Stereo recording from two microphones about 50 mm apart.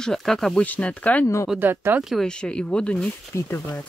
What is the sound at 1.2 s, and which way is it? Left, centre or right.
Speech, left.